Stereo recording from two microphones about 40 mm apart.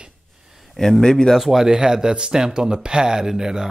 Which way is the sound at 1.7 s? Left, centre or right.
Centre.